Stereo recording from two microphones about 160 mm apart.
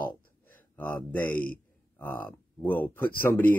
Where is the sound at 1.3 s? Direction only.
65° left (ahead or behind).